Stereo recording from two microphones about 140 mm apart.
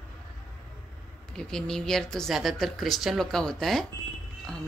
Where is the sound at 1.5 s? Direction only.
5° left (ahead or behind).